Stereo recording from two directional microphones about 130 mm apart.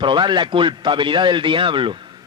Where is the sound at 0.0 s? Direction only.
35° right (ahead or behind).